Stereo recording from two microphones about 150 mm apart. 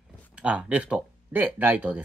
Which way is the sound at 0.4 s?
10° right (ahead or behind).